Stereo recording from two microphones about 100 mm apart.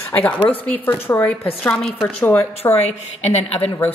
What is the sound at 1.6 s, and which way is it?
Speech, 5° left (ahead or behind).